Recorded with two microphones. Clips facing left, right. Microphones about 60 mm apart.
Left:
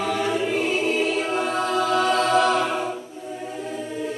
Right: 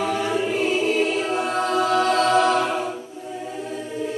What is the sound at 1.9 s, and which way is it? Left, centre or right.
Music, left.